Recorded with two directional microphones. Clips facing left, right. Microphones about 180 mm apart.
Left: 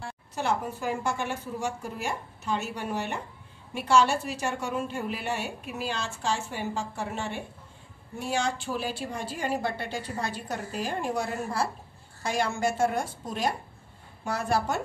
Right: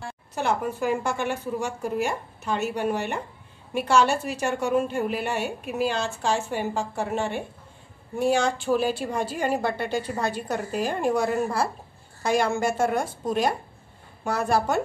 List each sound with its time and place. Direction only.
0.4 s a woman's voice: 60° right (ahead or behind)